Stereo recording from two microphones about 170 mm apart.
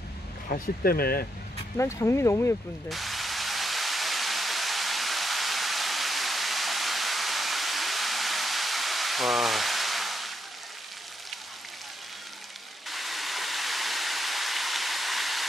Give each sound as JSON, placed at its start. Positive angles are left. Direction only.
{"t": 0.5, "sound": "speech", "side_deg": 60}
{"t": 1.8, "sound": "speech", "side_deg": 15}
{"t": 2.9, "sound": "a sound", "side_deg": 0}
{"t": 12.9, "sound": "waterfall", "side_deg": 0}